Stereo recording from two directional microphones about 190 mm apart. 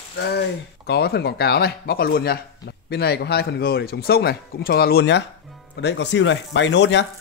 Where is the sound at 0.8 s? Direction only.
55° left (ahead or behind).